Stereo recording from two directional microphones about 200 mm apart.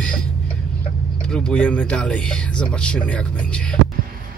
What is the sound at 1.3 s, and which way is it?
Speech, 5° left (ahead or behind).